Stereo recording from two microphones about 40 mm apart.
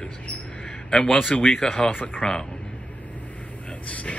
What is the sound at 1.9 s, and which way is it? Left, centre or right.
Speech, left.